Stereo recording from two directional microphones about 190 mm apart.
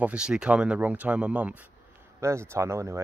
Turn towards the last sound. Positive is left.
turn(degrees=-15)  # may be behind; listen again after turning